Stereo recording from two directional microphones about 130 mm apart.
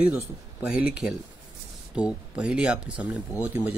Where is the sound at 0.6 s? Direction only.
10° right (ahead or behind).